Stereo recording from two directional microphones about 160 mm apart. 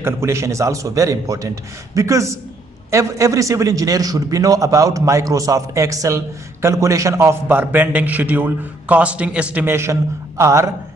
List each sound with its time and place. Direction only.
0.0 s a man's voice: 15° right (ahead or behind)